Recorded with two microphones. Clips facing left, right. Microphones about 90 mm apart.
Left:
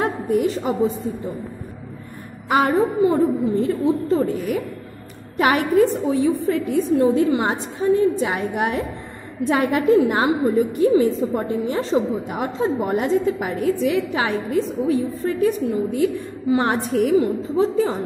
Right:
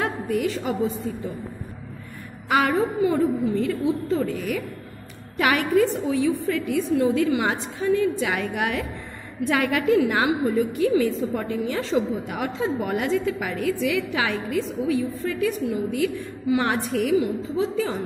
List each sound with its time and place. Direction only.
0.0 s a woman's voice: 30° left (ahead or behind)
2.5 s a woman's voice: 30° left (ahead or behind)